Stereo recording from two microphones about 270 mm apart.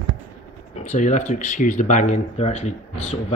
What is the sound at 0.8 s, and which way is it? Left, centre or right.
Speech, left.